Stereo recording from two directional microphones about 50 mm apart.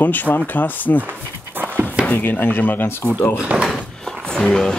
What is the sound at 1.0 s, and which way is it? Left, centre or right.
Dog, right.